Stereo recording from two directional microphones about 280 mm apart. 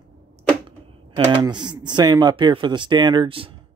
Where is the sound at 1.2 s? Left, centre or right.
Centre.